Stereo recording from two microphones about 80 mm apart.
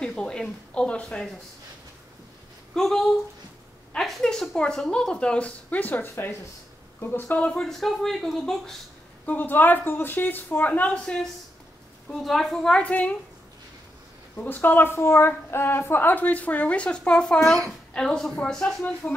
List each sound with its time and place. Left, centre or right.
0.0 s speech: centre
2.7 s a woman's voice: centre
7.6 s speech: centre
9.2 s a woman's voice: left
12.1 s speech: centre
14.3 s a woman's voice: left; by 18.9 s centre